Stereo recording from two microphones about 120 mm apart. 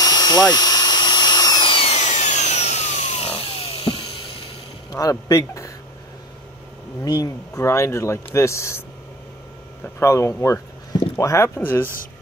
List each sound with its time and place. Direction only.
0.0 s a sound: 35° left (ahead or behind)
0.5 s drill: 35° left (ahead or behind)
1.8 s wood: 70° left (ahead or behind)
4.9 s speech: 30° left (ahead or behind)
7.1 s speech: 30° left (ahead or behind)
9.9 s speech: 25° left (ahead or behind)